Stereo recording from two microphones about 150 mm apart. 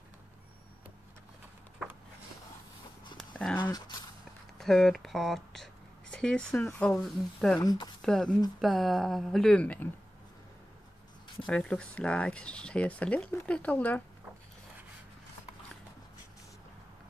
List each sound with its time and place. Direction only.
3.2 s a sound: 5° left (ahead or behind)
3.5 s speech: 30° left (ahead or behind)
4.6 s speech: 5° left (ahead or behind)
7.6 s speech: 30° left (ahead or behind)
8.0 s speech: 5° left (ahead or behind)
11.4 s speech: 5° left (ahead or behind)